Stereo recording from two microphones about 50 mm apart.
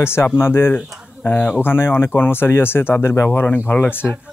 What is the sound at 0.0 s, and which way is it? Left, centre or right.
Speech, left.